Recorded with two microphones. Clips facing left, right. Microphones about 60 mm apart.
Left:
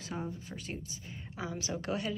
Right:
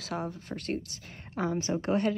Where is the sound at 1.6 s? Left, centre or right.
Right.